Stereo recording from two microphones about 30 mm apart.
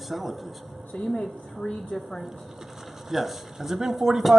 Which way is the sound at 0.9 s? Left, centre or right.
Left.